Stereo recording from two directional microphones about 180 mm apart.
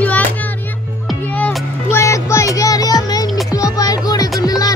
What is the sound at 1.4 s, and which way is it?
Music, 15° left (ahead or behind).